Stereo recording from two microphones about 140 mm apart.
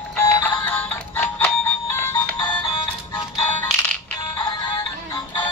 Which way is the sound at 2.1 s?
30° left (ahead or behind).